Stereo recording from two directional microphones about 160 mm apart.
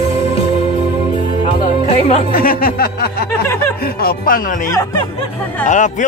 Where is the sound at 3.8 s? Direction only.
70° left (ahead or behind).